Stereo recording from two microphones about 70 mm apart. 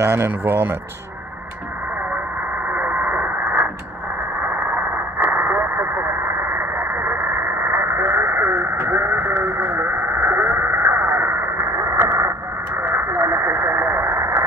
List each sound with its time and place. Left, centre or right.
0.0 s speech: right
2.7 s radio: right